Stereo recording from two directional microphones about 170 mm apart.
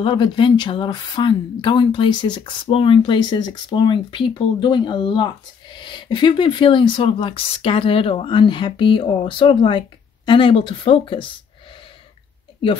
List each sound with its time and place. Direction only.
0.0 s speech: 30° left (ahead or behind)